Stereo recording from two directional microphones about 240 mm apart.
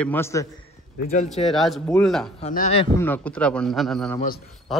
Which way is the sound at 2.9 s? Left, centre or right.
Centre.